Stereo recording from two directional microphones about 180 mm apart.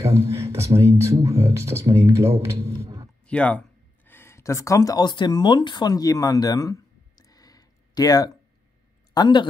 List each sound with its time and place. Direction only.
0.0 s speech: 15° right (ahead or behind)
3.3 s a sound: 5° left (ahead or behind)
9.1 s speech: 25° left (ahead or behind)